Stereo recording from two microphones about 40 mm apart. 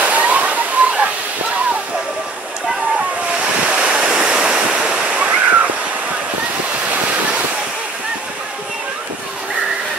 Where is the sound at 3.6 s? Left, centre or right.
Right.